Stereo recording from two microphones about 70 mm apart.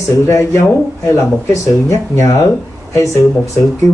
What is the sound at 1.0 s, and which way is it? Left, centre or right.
Speech, left.